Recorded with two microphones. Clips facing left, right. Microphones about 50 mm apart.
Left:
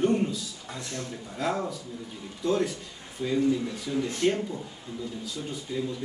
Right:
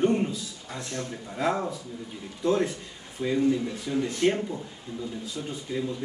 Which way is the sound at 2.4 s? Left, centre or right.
Right.